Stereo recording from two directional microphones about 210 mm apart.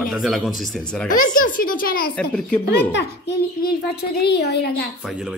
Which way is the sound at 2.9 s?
55° left (ahead or behind).